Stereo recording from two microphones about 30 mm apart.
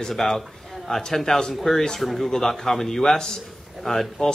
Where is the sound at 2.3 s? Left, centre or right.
Centre.